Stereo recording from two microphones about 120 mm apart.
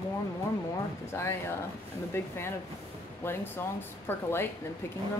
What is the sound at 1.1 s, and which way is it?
Speech, 20° left (ahead or behind).